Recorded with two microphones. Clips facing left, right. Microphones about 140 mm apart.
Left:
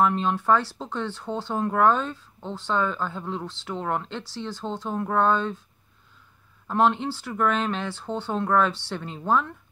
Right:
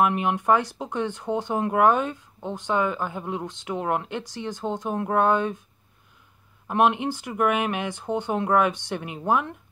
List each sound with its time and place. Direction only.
0.0 s speech: 15° right (ahead or behind)
6.7 s speech: 15° right (ahead or behind)